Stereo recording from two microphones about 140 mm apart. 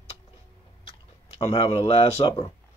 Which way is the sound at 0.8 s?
45° left (ahead or behind).